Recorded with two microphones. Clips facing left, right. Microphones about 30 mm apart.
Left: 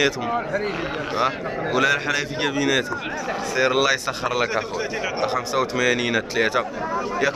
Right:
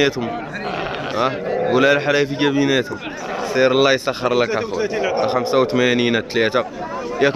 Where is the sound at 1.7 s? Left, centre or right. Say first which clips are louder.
Right 5 dB; centre.